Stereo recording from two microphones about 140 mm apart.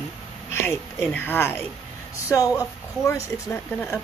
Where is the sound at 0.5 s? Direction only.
15° left (ahead or behind).